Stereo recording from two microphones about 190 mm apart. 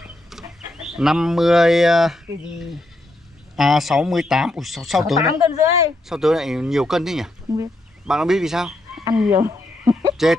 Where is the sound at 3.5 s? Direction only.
Centre (ahead or behind).